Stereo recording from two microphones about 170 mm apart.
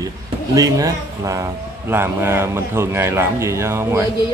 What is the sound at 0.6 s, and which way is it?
A man's voice, 20° right (ahead or behind).